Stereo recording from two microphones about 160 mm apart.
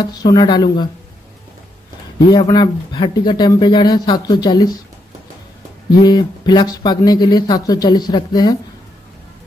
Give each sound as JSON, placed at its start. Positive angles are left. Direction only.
{"t": 0.0, "sound": "speech", "side_deg": 25}
{"t": 2.1, "sound": "speech", "side_deg": 25}
{"t": 6.0, "sound": "speech", "side_deg": 25}